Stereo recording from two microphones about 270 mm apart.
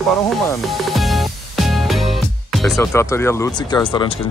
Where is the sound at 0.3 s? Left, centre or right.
Centre.